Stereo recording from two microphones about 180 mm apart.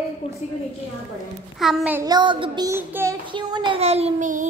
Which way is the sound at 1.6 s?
Centre (ahead or behind).